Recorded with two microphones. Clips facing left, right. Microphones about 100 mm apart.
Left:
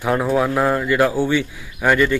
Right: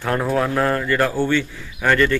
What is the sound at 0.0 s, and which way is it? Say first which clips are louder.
A man's voice: left 2 dB; 5° left (ahead or behind).